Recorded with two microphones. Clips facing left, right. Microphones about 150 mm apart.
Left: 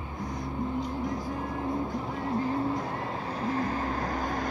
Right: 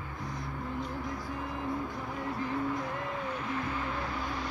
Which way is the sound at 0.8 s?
40° left (ahead or behind).